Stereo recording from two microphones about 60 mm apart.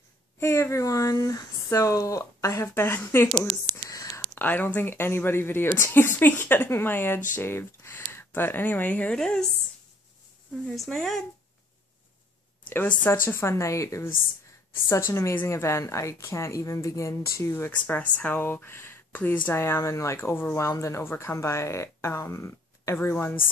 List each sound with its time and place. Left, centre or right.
0.4 s speech: left
0.8 s speech: left
2.7 s speech: left
4.4 s speech: left
9.1 s speech: centre
10.7 s speech: centre
12.6 s speech: left
17.6 s speech: left
21.1 s speech: left
22.9 s speech: left